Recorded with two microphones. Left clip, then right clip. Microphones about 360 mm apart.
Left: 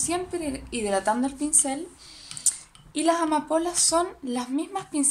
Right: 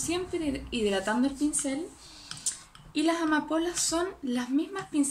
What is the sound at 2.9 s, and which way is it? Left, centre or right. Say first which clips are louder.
A woman's voice: left 4 dB; centre.